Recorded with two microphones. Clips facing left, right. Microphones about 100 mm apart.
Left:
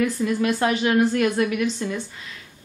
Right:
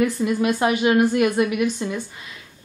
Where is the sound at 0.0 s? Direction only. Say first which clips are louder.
Right 2 dB; 15° right (ahead or behind).